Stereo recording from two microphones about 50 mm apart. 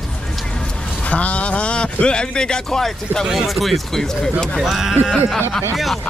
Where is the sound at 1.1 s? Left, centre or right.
Left; by 4.6 s centre.